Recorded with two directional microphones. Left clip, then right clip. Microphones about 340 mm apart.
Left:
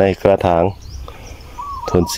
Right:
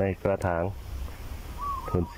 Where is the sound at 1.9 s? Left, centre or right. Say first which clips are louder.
Left 18 dB; centre.